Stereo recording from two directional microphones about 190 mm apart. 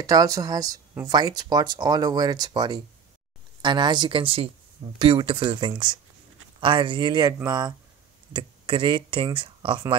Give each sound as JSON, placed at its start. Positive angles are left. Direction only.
{"t": 0.0, "sound": "speech", "side_deg": -20}